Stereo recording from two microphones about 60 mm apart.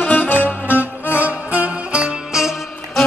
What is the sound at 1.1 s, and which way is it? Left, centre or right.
Music, right.